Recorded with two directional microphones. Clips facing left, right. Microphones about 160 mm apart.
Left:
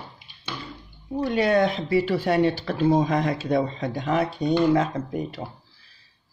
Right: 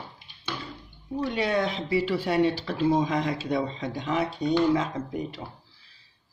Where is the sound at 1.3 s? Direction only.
50° left (ahead or behind).